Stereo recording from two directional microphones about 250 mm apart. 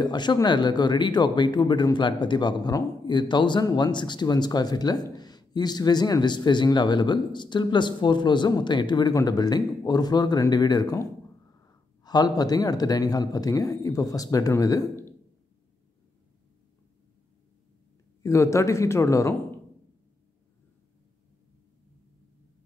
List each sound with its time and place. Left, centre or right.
0.0 s speech: centre
18.2 s speech: centre